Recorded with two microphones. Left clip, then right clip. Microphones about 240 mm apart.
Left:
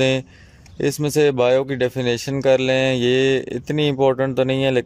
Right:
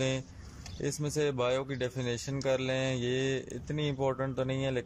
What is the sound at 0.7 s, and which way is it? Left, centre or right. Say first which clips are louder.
Speech: left 15 dB; left.